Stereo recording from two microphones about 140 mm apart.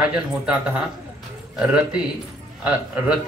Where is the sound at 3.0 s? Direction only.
10° right (ahead or behind).